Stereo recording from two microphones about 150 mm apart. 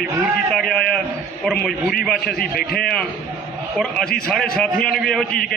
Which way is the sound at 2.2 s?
90° left.